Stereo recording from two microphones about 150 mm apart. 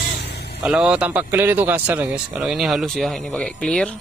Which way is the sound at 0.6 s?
5° right (ahead or behind).